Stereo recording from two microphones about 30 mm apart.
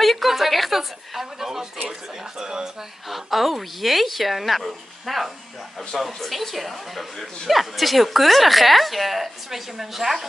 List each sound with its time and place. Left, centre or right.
0.0 s a woman's voice: centre
3.1 s speech: centre